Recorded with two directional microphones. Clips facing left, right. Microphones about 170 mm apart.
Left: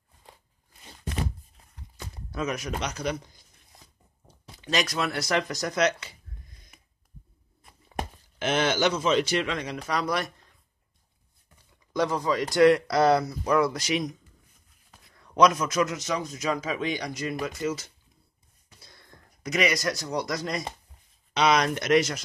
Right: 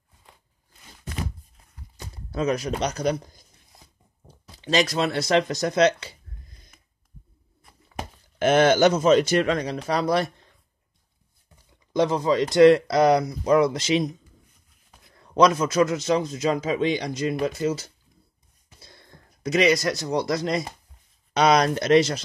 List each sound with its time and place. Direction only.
2.0 s speech: 30° right (ahead or behind)
4.6 s a man's voice: 30° right (ahead or behind)
8.4 s speech: 50° right (ahead or behind); by 10.3 s 30° right (ahead or behind)
11.9 s a man's voice: 25° right (ahead or behind)
15.1 s a man's voice: 30° right (ahead or behind)
21.3 s speech: 40° right (ahead or behind)